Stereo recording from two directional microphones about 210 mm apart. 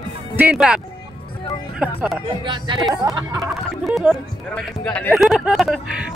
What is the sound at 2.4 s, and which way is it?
Speech, 20° right (ahead or behind).